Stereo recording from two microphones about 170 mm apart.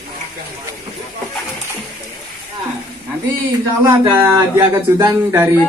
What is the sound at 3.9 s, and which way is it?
Speech, 20° right (ahead or behind).